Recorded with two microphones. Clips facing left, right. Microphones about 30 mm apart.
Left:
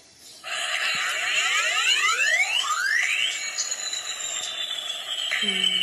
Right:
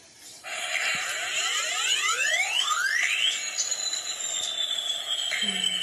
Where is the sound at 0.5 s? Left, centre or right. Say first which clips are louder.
Left 2 dB; left.